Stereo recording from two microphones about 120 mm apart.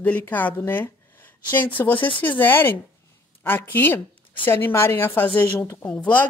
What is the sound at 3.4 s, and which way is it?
A woman's voice, 15° left (ahead or behind).